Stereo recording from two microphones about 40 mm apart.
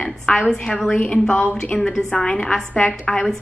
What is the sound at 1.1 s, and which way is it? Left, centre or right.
Speech, left.